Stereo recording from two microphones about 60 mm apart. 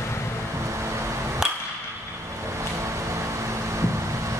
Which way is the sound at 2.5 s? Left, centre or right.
Right.